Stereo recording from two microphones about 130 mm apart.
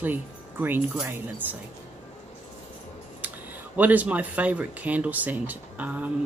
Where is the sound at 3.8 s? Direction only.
10° right (ahead or behind).